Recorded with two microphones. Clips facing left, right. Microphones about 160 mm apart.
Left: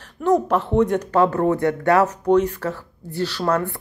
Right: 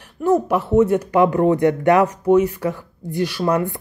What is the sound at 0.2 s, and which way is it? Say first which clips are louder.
A woman's voice: right 1 dB; 10° right (ahead or behind).